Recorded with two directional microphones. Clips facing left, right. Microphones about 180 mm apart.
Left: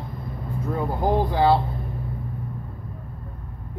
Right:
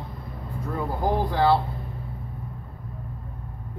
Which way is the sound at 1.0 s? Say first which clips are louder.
Left 2 dB; 20° left (ahead or behind).